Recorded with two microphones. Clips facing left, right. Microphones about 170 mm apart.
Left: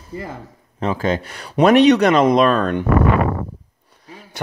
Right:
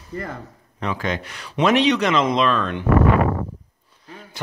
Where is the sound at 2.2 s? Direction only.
50° left (ahead or behind).